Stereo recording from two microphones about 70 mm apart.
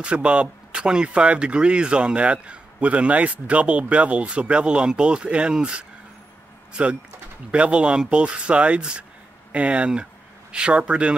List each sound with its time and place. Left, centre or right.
0.0 s speech: centre